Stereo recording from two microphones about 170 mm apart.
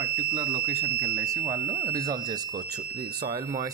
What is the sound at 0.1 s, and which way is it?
Fire alarm, 55° right (ahead or behind).